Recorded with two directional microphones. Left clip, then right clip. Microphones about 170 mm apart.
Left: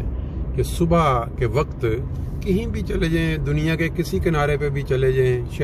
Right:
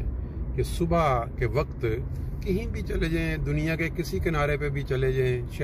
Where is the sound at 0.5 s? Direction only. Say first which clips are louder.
Left 6 dB; 10° left (ahead or behind).